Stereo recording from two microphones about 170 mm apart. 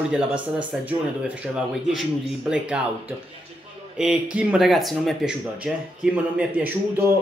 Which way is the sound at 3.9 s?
5° right (ahead or behind).